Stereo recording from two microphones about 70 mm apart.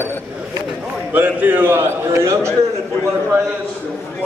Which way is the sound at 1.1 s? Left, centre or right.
Right.